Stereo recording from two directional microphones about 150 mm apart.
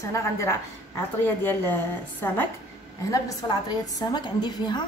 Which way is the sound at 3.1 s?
25° left (ahead or behind).